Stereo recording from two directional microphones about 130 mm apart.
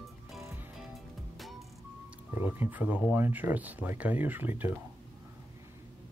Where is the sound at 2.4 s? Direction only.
15° right (ahead or behind).